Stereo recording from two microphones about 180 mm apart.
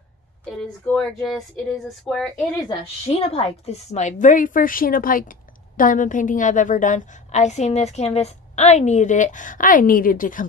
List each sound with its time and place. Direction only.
0.5 s speech: 5° left (ahead or behind)
2.8 s a woman's voice: 35° left (ahead or behind)